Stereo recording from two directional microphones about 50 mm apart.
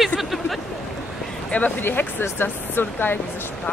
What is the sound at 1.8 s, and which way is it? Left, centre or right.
Speech, left.